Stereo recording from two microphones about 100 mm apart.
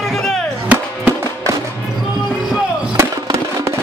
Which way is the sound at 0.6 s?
15° right (ahead or behind).